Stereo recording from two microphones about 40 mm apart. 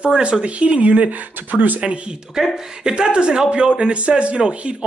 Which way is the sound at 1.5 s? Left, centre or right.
Right.